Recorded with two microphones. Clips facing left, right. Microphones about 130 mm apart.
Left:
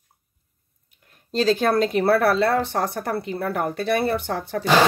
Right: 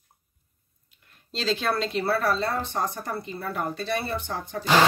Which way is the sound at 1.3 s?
45° left (ahead or behind).